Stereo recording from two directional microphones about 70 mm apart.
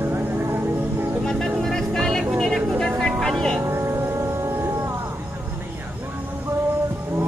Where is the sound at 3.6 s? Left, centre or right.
Right.